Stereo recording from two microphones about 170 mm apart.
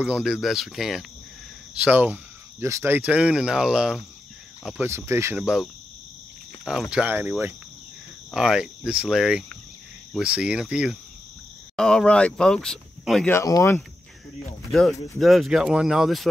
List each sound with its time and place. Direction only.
0.0 s speech: 5° right (ahead or behind)
4.7 s speech: 15° right (ahead or behind)
5.4 s speech: 5° right (ahead or behind)
8.3 s speech: centre (ahead or behind)
13.3 s speech: 20° left (ahead or behind)
14.7 s speech: centre (ahead or behind)